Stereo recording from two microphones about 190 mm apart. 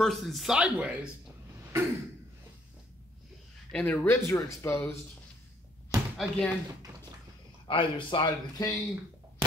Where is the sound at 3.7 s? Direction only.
10° left (ahead or behind).